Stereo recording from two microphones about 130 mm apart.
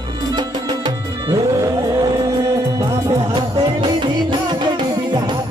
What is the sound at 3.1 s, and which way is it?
Music, 30° right (ahead or behind).